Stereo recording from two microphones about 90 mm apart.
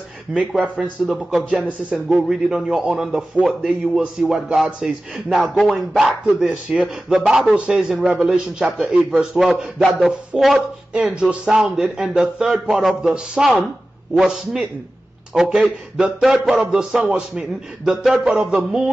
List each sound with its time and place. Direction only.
0.3 s a man's voice: 10° right (ahead or behind)
8.1 s a man's voice: 20° right (ahead or behind); by 16.5 s centre (ahead or behind)
16.5 s speech: 15° right (ahead or behind)